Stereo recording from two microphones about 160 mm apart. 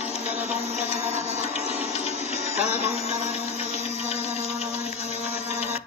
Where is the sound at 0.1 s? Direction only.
40° left (ahead or behind).